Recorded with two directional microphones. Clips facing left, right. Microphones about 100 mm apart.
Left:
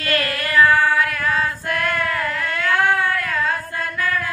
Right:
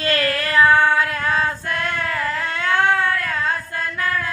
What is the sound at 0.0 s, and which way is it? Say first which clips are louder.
Female singing: right 2 dB; 30° right (ahead or behind).